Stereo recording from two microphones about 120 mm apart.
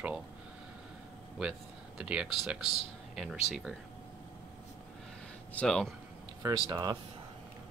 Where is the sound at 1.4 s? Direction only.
5° right (ahead or behind).